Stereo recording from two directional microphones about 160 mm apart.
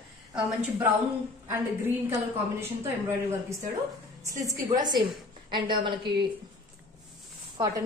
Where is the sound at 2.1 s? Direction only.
15° right (ahead or behind).